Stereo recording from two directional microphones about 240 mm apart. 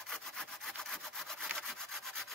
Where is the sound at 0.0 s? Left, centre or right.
Centre.